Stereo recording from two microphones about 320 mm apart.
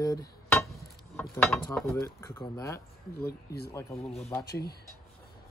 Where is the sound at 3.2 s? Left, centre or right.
Left.